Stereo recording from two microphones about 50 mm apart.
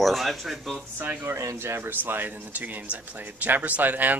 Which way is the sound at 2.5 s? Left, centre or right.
Right.